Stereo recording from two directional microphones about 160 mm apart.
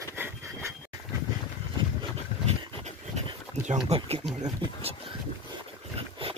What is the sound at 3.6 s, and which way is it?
Speech, 40° right (ahead or behind).